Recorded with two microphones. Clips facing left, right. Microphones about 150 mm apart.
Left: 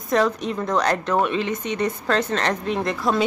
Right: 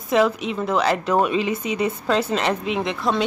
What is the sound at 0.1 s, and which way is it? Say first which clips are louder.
A man's voice: right 1 dB; 5° right (ahead or behind).